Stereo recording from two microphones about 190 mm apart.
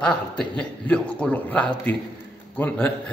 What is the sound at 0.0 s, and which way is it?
A man's voice, 5° left (ahead or behind).